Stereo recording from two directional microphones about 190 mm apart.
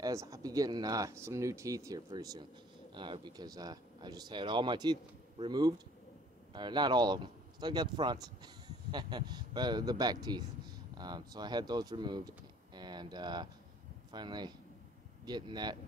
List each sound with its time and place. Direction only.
0.0 s speech: 15° right (ahead or behind)